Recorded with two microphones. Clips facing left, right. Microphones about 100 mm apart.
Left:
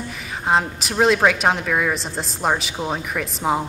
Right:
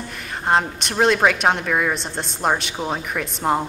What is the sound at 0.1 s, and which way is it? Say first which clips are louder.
A woman's voice: right 1 dB; centre (ahead or behind).